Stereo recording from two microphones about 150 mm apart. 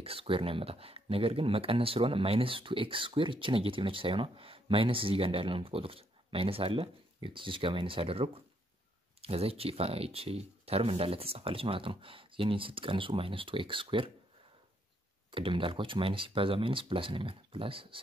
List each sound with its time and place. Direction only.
0.0 s speech: 40° right (ahead or behind)
15.3 s speech: 35° right (ahead or behind)